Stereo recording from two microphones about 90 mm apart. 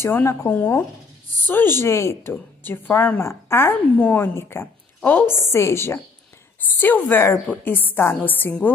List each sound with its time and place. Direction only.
0.0 s a woman's voice: 30° left (ahead or behind)